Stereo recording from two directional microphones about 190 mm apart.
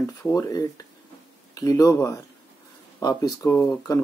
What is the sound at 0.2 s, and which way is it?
Speech, 15° left (ahead or behind).